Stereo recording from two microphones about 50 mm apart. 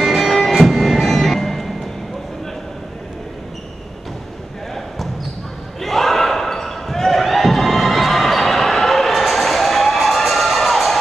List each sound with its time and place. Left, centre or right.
0.0 s music: centre
5.8 s basketball bounce: centre